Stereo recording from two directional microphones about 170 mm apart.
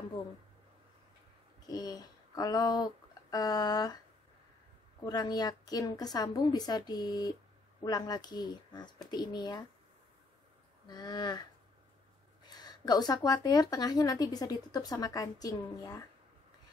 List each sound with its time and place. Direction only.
1.7 s speech: 25° left (ahead or behind)
5.0 s speech: 25° left (ahead or behind)
10.9 s speech: 25° left (ahead or behind)
12.4 s speech: 25° left (ahead or behind)